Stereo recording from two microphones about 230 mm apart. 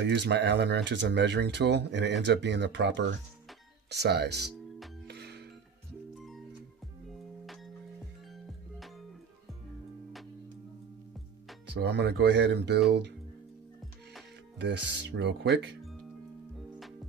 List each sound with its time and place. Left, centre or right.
0.0 s speech: right
5.0 s music: right
6.1 s music: centre
11.7 s speech: right
14.6 s speech: right